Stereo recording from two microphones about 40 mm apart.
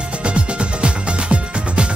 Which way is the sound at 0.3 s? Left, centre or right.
Right.